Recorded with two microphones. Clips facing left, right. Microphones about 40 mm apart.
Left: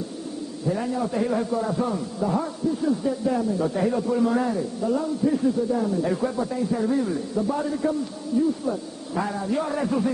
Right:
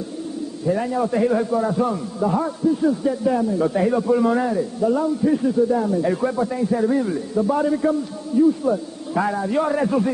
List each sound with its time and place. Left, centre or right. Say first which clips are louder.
0.7 s a man's voice: right 5 dB; centre